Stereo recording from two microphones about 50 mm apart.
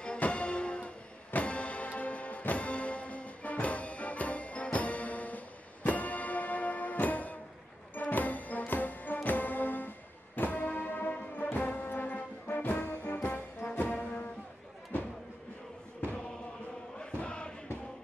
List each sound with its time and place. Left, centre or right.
0.0 s music: left
11.5 s brass instrument: left
13.2 s music: left
17.0 s chant: centre